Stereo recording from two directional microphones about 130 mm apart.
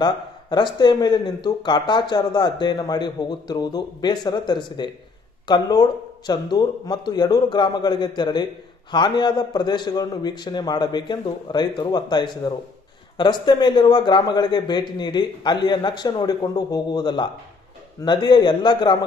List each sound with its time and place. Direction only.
0.0 s speech: 35° left (ahead or behind)